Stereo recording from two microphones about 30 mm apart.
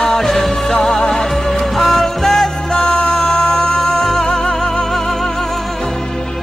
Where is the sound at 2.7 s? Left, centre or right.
Left.